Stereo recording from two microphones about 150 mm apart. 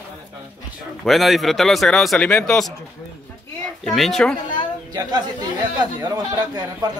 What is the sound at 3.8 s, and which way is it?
Speech, centre (ahead or behind).